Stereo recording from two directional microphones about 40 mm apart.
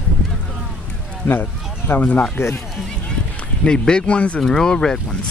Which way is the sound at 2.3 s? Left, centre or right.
Left.